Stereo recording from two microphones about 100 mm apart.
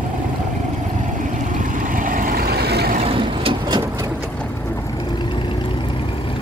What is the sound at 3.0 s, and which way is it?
Vehicle, 60° right (ahead or behind).